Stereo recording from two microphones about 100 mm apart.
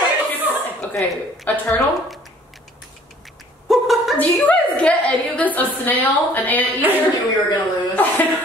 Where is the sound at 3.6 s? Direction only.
Centre (ahead or behind).